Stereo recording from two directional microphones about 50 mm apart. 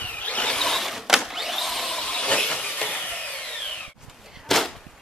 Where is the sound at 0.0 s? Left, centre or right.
Left.